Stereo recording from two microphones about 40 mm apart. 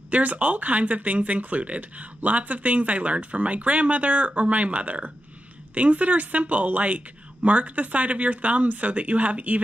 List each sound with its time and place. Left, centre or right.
0.1 s speech: right